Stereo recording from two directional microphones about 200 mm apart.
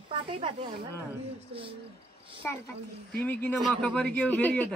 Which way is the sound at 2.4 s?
10° left (ahead or behind).